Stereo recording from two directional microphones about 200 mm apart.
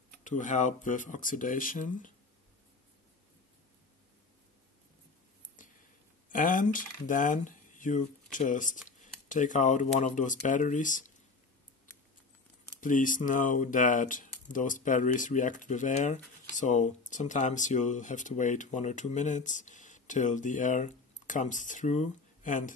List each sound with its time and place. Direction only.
0.2 s speech: 40° left (ahead or behind)
5.6 s a sound: 40° left (ahead or behind)
6.2 s speech: 40° left (ahead or behind)
9.0 s a sound: 40° left (ahead or behind)
9.9 s speech: 40° left (ahead or behind)
12.8 s speech: 40° left (ahead or behind)